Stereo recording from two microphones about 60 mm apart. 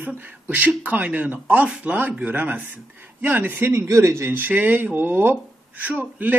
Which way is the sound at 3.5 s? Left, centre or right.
Right.